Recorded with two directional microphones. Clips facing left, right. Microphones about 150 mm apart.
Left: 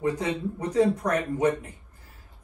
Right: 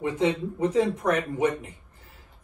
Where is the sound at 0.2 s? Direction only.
25° right (ahead or behind).